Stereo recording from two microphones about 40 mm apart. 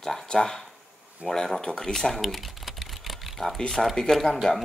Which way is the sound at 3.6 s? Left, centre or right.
Centre.